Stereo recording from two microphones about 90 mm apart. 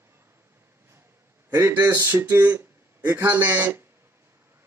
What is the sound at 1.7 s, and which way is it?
Speech, 25° right (ahead or behind).